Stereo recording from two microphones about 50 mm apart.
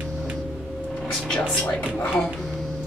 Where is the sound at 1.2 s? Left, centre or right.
Left.